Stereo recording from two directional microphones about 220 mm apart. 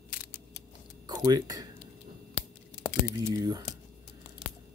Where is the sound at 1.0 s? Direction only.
15° right (ahead or behind).